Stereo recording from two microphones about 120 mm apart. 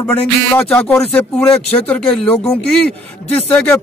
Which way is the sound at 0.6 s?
20° left (ahead or behind).